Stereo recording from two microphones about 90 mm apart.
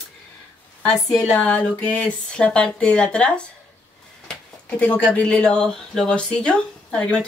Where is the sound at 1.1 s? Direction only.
15° left (ahead or behind).